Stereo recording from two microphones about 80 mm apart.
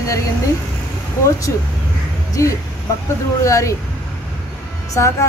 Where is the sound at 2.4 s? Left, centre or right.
Left.